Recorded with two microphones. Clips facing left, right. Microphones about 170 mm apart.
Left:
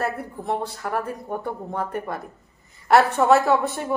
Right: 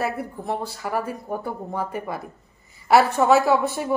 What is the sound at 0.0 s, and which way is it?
A woman's voice, 5° right (ahead or behind).